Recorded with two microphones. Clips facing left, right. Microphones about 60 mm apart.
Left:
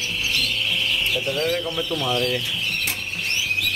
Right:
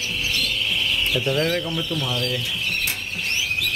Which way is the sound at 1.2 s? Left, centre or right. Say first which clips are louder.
Right 3 dB; right.